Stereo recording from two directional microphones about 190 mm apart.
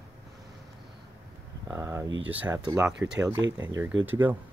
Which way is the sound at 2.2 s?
10° right (ahead or behind).